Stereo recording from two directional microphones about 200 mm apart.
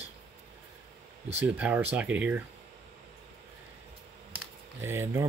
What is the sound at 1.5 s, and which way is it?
Speech, 10° right (ahead or behind).